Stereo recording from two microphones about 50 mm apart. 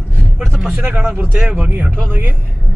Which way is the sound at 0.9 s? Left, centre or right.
Right.